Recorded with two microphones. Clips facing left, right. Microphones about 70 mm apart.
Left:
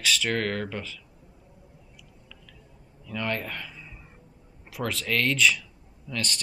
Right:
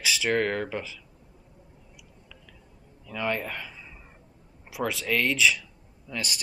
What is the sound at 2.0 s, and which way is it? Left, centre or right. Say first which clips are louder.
Chewing: even; centre.